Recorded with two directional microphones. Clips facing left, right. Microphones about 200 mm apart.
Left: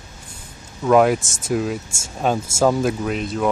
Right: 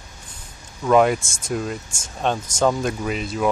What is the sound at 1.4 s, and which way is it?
Speech, 5° left (ahead or behind).